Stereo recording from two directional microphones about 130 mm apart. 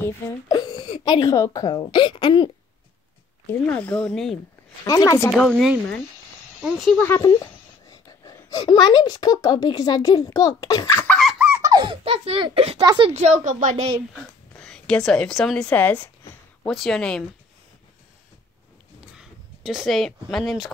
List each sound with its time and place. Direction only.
0.5 s a sound: 30° left (ahead or behind)
1.3 s a woman's voice: 25° left (ahead or behind)
3.6 s speech: 10° left (ahead or behind)
4.8 s speech: 25° left (ahead or behind)
5.3 s speech: 10° left (ahead or behind)
6.6 s speech: 5° right (ahead or behind)
7.2 s a woman's voice: 30° left (ahead or behind)
11.3 s a sound: 15° right (ahead or behind)
11.6 s speech: 35° right (ahead or behind)
13.1 s a woman's voice: 65° right (ahead or behind)
14.6 s speech: 5° left (ahead or behind)
16.6 s speech: centre (ahead or behind)
19.1 s speech: 5° right (ahead or behind)